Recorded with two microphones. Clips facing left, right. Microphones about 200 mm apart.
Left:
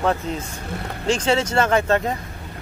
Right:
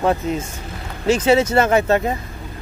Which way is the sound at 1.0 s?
10° right (ahead or behind).